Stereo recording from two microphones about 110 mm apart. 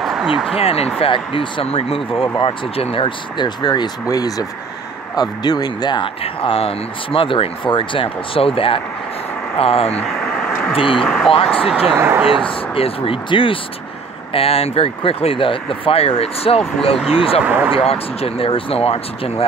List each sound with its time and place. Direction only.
0.0 s a sound: 5° right (ahead or behind)
0.6 s speech: 65° left (ahead or behind)
9.9 s vehicle: 5° left (ahead or behind)
10.7 s speech: 55° left (ahead or behind)
11.0 s speech: centre (ahead or behind)
11.6 s speech: 10° right (ahead or behind)
12.4 s speech: 60° left (ahead or behind)
16.9 s speech: 5° right (ahead or behind)
17.5 s speech: 20° right (ahead or behind)
17.7 s speech: 65° left (ahead or behind)